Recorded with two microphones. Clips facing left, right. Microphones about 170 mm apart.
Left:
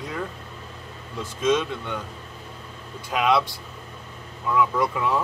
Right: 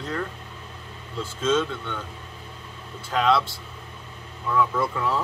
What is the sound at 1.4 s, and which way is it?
Speech, 15° left (ahead or behind).